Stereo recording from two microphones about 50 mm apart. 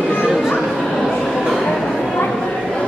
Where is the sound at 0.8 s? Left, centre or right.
Centre.